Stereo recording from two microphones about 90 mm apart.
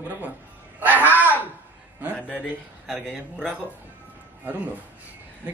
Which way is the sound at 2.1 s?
15° left (ahead or behind).